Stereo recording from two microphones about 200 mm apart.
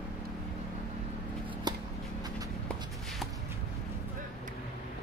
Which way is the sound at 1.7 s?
20° right (ahead or behind).